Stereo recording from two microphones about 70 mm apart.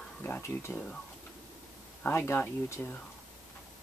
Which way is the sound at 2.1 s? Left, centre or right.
Left.